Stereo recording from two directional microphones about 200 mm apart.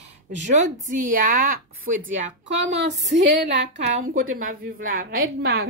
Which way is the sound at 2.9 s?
60° right (ahead or behind).